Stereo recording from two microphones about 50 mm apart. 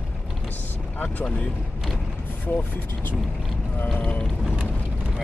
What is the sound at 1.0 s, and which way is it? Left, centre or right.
Speech, left.